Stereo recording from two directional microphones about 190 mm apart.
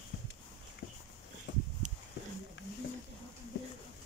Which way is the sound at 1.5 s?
70° left (ahead or behind).